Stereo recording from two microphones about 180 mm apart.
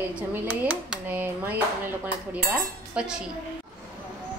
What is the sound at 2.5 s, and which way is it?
Speech, 5° right (ahead or behind).